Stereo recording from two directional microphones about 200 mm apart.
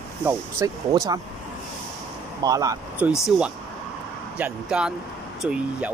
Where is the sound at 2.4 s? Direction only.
15° right (ahead or behind).